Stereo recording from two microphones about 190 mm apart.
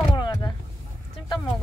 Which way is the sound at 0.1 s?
20° left (ahead or behind).